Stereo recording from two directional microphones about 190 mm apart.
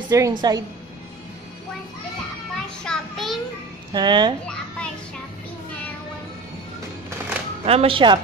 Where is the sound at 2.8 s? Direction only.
Centre (ahead or behind).